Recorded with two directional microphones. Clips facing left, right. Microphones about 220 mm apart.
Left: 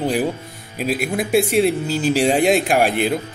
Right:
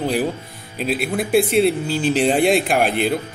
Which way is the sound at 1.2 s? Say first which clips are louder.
Right 1 dB; centre (ahead or behind).